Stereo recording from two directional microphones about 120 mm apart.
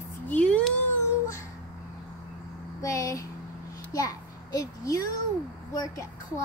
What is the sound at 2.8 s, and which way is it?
A woman's voice, 25° left (ahead or behind).